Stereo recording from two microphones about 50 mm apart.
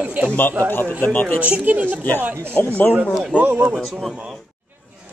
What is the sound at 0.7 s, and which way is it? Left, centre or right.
Speech, left.